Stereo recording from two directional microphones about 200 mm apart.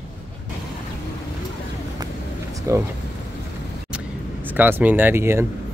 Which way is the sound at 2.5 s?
15° right (ahead or behind).